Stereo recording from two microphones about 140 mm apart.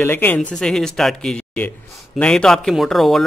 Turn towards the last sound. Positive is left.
turn(degrees=0)  # may be behind; listen again after turning